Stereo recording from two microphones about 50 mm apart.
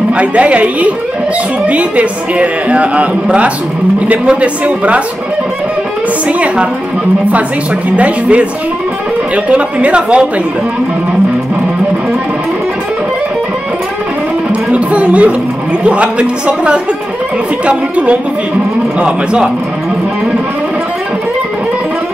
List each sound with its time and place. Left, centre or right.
0.1 s a man's voice: right
6.2 s a man's voice: right
7.9 s a man's voice: right
9.5 s a man's voice: right
14.5 s music: right
15.8 s a man's voice: right